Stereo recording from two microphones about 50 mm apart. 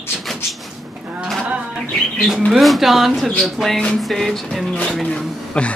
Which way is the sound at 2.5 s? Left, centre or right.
Centre.